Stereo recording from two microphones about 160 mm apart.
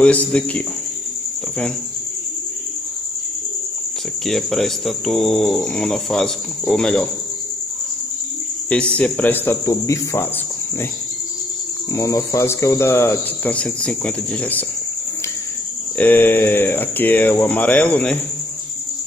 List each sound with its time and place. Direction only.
0.0 s speech: 10° left (ahead or behind)
4.3 s speech: centre (ahead or behind)
8.6 s speech: 5° left (ahead or behind)
11.9 s speech: 20° left (ahead or behind)
16.0 s speech: 10° left (ahead or behind)